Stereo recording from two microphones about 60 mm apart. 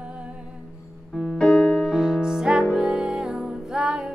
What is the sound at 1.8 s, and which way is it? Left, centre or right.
Music, centre.